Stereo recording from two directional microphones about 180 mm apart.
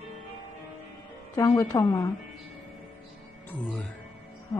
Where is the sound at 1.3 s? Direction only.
20° left (ahead or behind).